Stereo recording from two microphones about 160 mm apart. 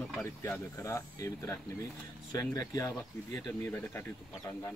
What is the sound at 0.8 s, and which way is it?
Speech, 20° left (ahead or behind).